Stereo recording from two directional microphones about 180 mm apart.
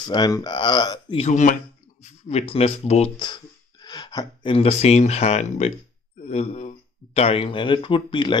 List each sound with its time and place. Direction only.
0.0 s speech: 25° left (ahead or behind)
1.2 s speech: 45° left (ahead or behind); by 8.4 s 25° left (ahead or behind)